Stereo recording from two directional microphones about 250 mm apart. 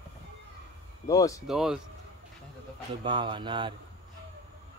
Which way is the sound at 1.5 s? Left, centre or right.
Centre.